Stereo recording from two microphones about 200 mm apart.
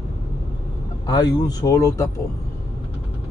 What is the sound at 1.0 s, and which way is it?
Speech, 20° left (ahead or behind).